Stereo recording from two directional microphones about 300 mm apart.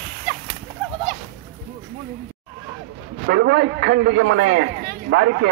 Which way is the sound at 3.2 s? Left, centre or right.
Right.